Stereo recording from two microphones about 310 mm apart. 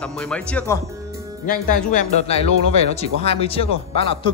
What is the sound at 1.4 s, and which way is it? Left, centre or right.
Speech, left.